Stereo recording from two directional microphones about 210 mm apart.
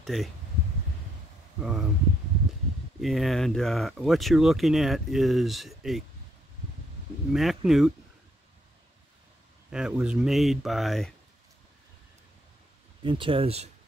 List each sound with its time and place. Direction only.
0.0 s speech: centre (ahead or behind)
1.6 s speech: centre (ahead or behind)
3.0 s speech: centre (ahead or behind)
7.3 s speech: centre (ahead or behind)
9.7 s speech: 5° right (ahead or behind)
13.0 s speech: 25° right (ahead or behind)